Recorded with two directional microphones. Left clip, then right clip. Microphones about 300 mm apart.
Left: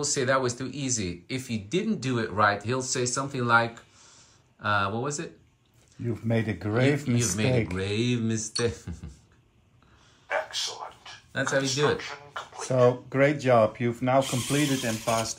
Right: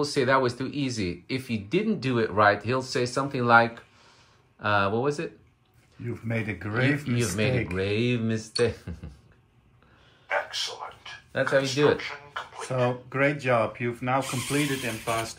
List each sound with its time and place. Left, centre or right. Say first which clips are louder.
0.0 s speech: right 2 dB; centre
6.0 s speech: left 3 dB; left
6.7 s speech: left 1 dB; centre
10.2 s a sound: right 1 dB; centre
12.6 s speech: left 5 dB; left